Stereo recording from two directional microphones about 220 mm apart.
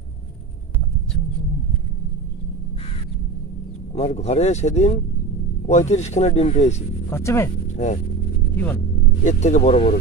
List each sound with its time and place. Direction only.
3.9 s speech: 30° left (ahead or behind)
7.1 s speech: 10° left (ahead or behind)
7.7 s speech: 30° left (ahead or behind)
9.2 s speech: 35° left (ahead or behind)